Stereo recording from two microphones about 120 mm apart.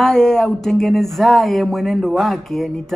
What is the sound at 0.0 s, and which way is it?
Speech, 5° left (ahead or behind).